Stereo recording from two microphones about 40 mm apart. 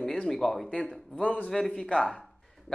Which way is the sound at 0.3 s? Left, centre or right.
Centre.